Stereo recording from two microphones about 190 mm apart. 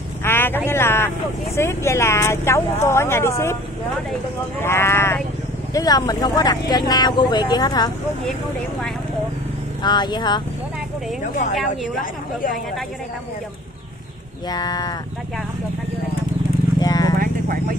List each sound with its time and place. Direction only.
0.2 s vehicle: 10° left (ahead or behind)
0.7 s speech: 10° left (ahead or behind)
4.6 s speech: 10° left (ahead or behind)
9.8 s speech: 20° left (ahead or behind)
14.5 s speech: 20° left (ahead or behind)
16.8 s vehicle: 20° left (ahead or behind)
17.2 s vehicle: 50° right (ahead or behind)